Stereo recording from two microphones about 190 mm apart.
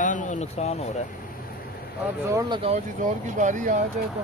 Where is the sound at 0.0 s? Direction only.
40° left (ahead or behind).